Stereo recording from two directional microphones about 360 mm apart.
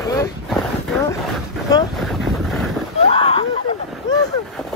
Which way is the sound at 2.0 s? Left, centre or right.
Centre.